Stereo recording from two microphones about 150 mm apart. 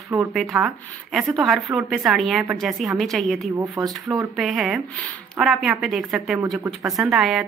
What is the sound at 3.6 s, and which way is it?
Speech, 25° right (ahead or behind).